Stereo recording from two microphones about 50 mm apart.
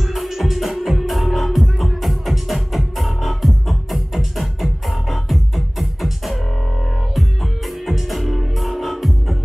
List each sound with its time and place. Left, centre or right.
0.0 s music: centre
7.8 s music: centre